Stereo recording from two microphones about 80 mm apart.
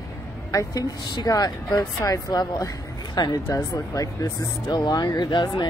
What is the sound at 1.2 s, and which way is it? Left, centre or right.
A woman's voice, left.